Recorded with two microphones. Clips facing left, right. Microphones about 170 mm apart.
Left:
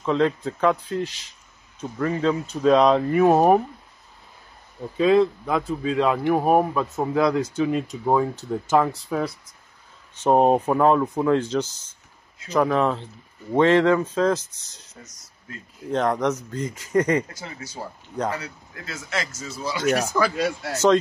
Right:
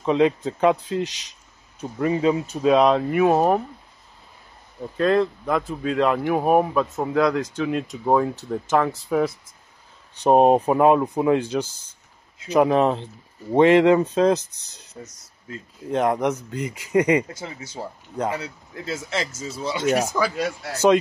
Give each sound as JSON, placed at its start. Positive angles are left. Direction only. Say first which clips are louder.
{"t": 0.0, "sound": "speech", "louder": "right 2 dB", "side_deg": -15}
{"t": 4.9, "sound": "speech", "louder": "left 2 dB", "side_deg": 0}
{"t": 10.1, "sound": "speech", "louder": "right 2 dB", "side_deg": -15}
{"t": 15.9, "sound": "speech", "louder": "right 1 dB", "side_deg": -15}
{"t": 17.3, "sound": "speech", "louder": "right 3 dB", "side_deg": -25}
{"t": 18.1, "sound": "speech", "louder": "right 1 dB", "side_deg": -5}
{"t": 18.4, "sound": "speech", "louder": "right 4 dB", "side_deg": -25}
{"t": 20.2, "sound": "speech", "louder": "left 1 dB", "side_deg": -5}